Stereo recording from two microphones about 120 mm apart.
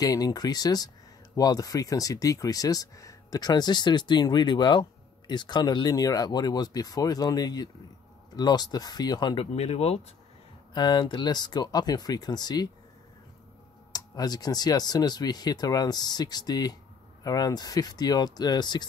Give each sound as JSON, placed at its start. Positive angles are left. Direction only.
{"t": 0.0, "sound": "speech", "side_deg": 30}
{"t": 9.5, "sound": "speech", "side_deg": 65}
{"t": 10.7, "sound": "speech", "side_deg": 35}
{"t": 13.9, "sound": "speech", "side_deg": 35}